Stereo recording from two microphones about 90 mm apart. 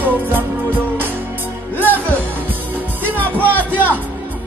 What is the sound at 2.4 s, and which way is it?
Music, 20° right (ahead or behind).